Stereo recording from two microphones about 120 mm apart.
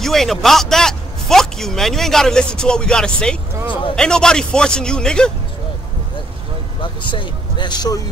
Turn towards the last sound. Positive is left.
turn(degrees=35)  # may be behind; listen again after turning